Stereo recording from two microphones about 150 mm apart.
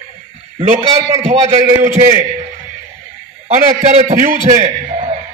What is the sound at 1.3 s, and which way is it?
Speech, 45° right (ahead or behind).